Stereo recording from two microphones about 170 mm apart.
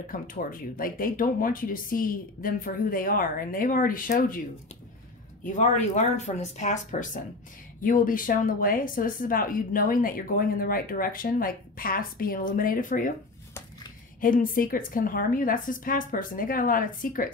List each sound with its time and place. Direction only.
0.1 s speech: 55° left (ahead or behind)
5.4 s a woman's voice: 45° left (ahead or behind)
14.2 s a woman's voice: 55° left (ahead or behind)